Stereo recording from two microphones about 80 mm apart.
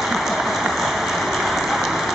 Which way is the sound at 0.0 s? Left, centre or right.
Centre.